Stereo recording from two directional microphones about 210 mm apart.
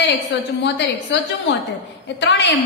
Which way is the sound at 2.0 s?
55° left (ahead or behind).